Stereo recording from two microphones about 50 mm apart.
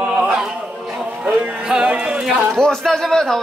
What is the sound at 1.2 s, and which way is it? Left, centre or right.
Music, centre.